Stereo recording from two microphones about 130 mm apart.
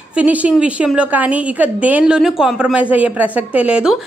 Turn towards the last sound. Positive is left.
turn(degrees=-10)  # may be behind; listen again after turning